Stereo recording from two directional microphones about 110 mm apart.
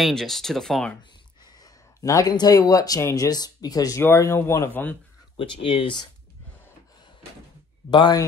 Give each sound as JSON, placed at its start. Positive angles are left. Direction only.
{"t": 0.0, "sound": "speech", "side_deg": 5}
{"t": 1.6, "sound": "speech", "side_deg": 30}
{"t": 5.4, "sound": "speech", "side_deg": 55}
{"t": 7.9, "sound": "speech", "side_deg": 40}